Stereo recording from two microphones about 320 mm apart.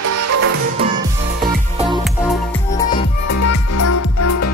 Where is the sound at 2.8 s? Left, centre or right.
Centre.